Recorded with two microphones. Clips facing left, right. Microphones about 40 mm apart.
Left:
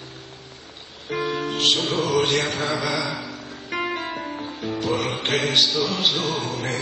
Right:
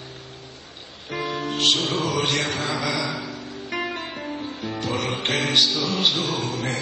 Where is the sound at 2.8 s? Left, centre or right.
Centre.